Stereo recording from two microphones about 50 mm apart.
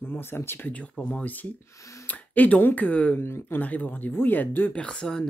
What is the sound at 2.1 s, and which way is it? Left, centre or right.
Speech, left.